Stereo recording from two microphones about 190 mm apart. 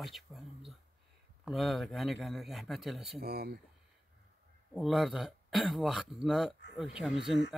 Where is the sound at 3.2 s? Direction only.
55° right (ahead or behind).